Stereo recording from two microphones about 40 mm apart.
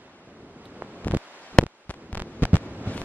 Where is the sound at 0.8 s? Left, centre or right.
Right.